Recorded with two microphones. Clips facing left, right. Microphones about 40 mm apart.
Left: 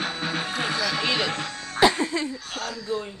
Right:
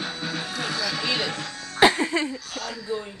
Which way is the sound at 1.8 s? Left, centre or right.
Right.